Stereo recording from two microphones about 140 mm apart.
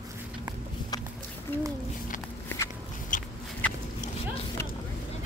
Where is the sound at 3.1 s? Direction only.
70° left (ahead or behind).